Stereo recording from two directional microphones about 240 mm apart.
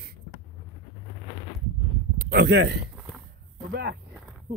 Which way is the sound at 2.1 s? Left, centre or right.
Right.